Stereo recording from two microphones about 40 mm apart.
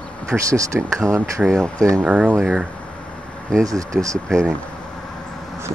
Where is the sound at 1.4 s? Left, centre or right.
Right.